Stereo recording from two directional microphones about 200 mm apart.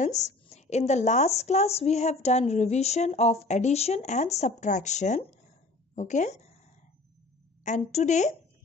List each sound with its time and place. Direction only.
0.0 s a woman's voice: 35° left (ahead or behind)
7.6 s a woman's voice: 35° left (ahead or behind)